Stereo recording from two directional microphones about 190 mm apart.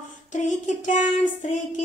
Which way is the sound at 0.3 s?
40° left (ahead or behind).